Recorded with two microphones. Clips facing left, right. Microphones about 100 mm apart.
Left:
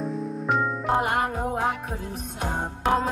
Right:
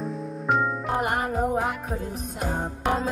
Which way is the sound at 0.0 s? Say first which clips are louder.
Left 2 dB; centre (ahead or behind).